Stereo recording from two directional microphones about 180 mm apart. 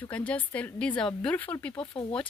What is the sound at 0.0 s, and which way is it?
A woman's voice, 10° left (ahead or behind).